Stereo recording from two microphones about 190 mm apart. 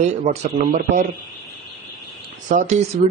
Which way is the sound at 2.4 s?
40° right (ahead or behind).